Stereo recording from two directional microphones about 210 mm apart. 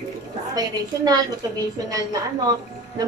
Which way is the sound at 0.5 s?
20° right (ahead or behind).